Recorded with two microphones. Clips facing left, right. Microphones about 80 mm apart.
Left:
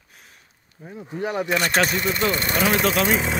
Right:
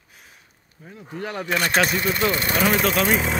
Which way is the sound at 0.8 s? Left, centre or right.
Centre.